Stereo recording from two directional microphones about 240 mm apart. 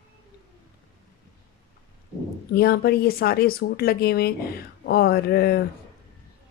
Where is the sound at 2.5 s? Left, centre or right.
Left.